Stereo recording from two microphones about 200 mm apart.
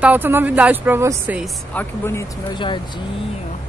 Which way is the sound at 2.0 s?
15° left (ahead or behind).